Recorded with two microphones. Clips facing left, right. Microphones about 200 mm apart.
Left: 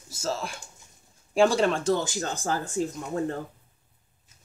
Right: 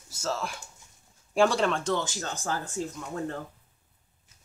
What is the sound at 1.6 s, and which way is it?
Speech, 35° left (ahead or behind).